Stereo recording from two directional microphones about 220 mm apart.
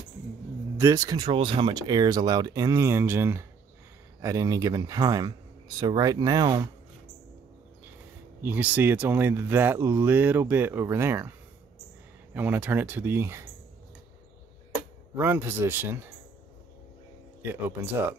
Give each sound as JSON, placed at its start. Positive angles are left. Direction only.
{"t": 0.7, "sound": "speech", "side_deg": -15}
{"t": 8.4, "sound": "speech", "side_deg": -5}
{"t": 12.4, "sound": "speech", "side_deg": -5}
{"t": 15.1, "sound": "speech", "side_deg": -10}
{"t": 17.4, "sound": "speech", "side_deg": -10}